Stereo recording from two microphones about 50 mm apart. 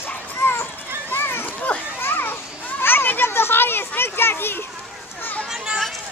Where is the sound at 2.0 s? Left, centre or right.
Left.